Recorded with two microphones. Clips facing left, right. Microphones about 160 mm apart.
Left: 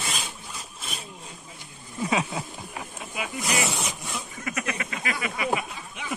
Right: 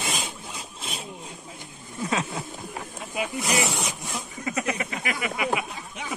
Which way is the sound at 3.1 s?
30° right (ahead or behind).